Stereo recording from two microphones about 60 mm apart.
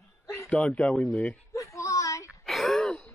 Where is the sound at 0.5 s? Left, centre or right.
Left.